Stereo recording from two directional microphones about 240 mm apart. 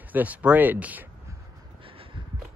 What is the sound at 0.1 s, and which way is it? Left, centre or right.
Speech, centre.